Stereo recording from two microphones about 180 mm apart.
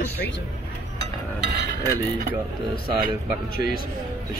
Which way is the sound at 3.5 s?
55° left (ahead or behind).